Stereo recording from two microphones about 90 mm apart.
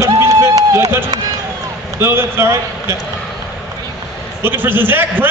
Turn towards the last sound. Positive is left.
turn(degrees=-20)  # may be behind; listen again after turning